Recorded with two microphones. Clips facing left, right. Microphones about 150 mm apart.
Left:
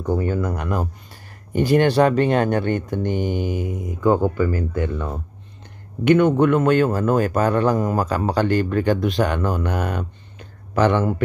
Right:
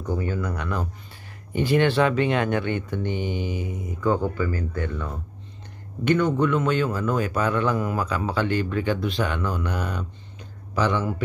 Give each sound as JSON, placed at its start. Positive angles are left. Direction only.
{"t": 0.0, "sound": "a man's voice", "side_deg": 45}
{"t": 4.6, "sound": "speech", "side_deg": 20}
{"t": 4.9, "sound": "speech", "side_deg": 35}
{"t": 6.0, "sound": "a man's voice", "side_deg": 60}